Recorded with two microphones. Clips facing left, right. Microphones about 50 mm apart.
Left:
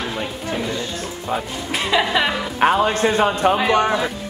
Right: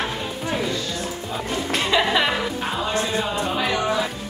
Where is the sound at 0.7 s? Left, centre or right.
Left.